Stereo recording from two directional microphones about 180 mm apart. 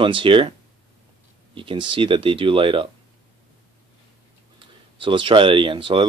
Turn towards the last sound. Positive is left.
turn(degrees=-25)  # may be behind; listen again after turning